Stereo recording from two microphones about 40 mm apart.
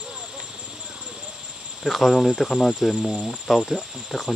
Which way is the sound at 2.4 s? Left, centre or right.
Centre.